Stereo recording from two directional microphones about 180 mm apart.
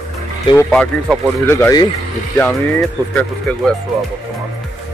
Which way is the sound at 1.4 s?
15° left (ahead or behind).